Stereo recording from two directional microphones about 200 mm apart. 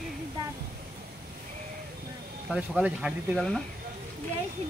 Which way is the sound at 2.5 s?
5° right (ahead or behind).